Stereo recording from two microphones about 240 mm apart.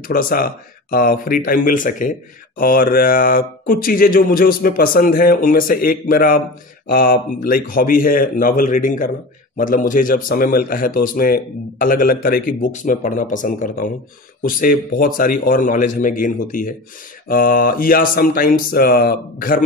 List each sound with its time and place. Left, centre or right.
0.1 s speech: left